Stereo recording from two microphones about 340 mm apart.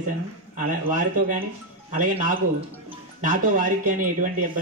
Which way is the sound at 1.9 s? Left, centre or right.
Right.